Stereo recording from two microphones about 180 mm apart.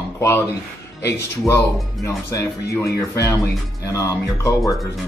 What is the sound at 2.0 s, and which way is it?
Speech, 15° left (ahead or behind).